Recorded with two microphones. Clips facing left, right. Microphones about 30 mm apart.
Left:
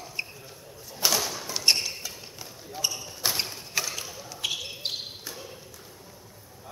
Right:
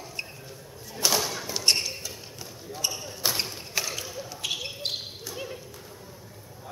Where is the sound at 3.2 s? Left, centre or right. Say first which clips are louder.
Even; centre.